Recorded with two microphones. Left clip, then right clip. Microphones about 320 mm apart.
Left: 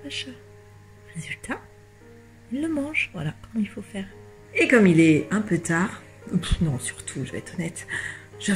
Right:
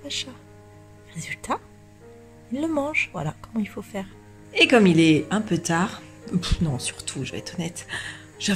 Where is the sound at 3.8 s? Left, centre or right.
Right.